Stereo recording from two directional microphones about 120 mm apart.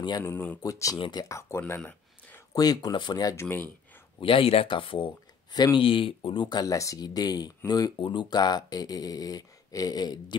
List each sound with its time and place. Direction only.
0.2 s speech: 10° left (ahead or behind)
0.6 s speech: 30° left (ahead or behind)
0.9 s speech: 45° left (ahead or behind)
1.8 s a sound: 10° left (ahead or behind)
2.5 s speech: 35° left (ahead or behind)
4.2 s speech: 50° left (ahead or behind)